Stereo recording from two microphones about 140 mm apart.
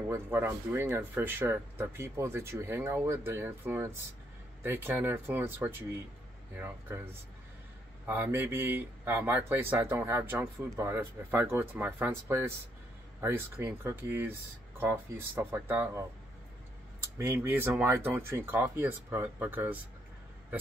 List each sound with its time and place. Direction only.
0.1 s speech: 15° right (ahead or behind)
8.1 s speech: 15° right (ahead or behind)
17.2 s speech: 15° right (ahead or behind)